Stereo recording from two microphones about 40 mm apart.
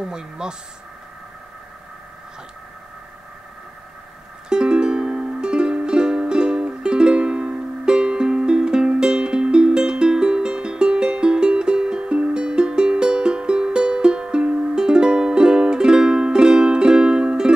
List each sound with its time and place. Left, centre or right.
0.0 s speech: centre
4.5 s music: right